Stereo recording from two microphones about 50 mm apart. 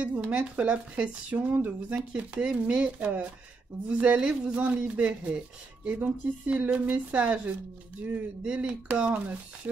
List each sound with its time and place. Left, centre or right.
0.0 s speech: right